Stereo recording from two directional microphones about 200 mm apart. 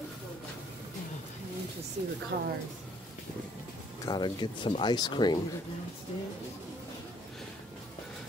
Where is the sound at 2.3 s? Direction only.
50° right (ahead or behind).